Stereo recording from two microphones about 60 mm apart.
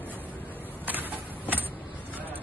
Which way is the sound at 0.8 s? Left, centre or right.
Right.